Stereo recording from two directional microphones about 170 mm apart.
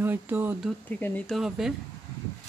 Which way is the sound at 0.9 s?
10° left (ahead or behind).